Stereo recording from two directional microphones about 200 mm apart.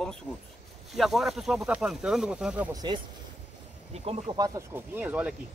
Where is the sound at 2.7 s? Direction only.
20° right (ahead or behind).